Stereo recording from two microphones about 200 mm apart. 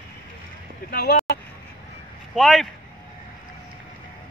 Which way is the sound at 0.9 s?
55° left (ahead or behind).